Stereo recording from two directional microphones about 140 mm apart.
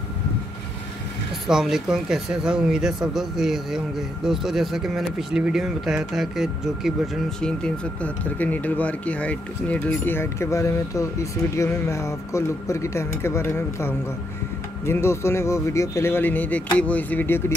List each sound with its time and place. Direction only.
1.5 s speech: 5° right (ahead or behind)
7.4 s speech: 10° left (ahead or behind)